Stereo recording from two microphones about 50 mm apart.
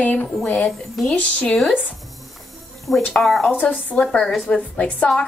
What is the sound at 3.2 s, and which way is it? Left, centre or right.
Speech, centre.